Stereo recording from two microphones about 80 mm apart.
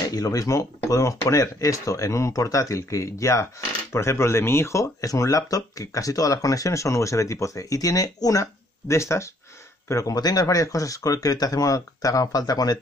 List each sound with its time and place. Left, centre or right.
0.1 s speech: left